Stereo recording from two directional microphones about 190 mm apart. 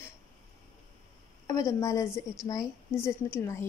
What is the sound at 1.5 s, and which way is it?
A woman's voice, 15° left (ahead or behind).